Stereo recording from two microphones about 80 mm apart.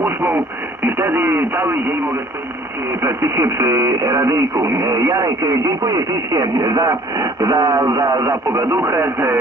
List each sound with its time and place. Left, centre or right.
0.0 s radio: right
0.8 s speech: right
3.0 s speech: right